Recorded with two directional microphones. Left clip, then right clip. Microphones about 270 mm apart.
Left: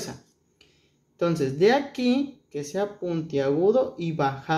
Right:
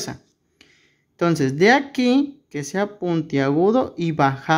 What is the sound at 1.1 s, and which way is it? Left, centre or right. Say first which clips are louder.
Speech: right 5 dB; right.